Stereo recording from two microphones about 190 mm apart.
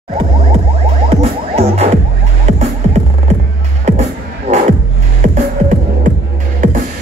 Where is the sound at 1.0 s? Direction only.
30° right (ahead or behind).